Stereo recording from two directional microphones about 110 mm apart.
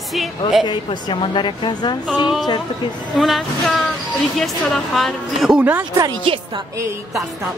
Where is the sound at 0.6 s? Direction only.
45° left (ahead or behind).